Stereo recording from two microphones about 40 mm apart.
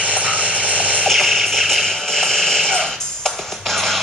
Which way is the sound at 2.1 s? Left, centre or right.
Centre.